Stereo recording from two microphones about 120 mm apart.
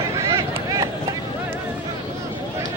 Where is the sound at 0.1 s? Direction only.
30° right (ahead or behind).